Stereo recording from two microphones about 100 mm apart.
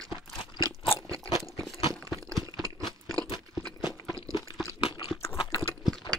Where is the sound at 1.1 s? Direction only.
35° right (ahead or behind).